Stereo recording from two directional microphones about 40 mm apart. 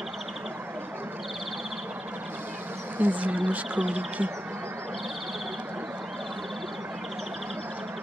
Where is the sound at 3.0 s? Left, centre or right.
Right.